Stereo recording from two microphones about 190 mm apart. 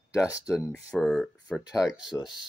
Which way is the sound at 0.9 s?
Centre (ahead or behind).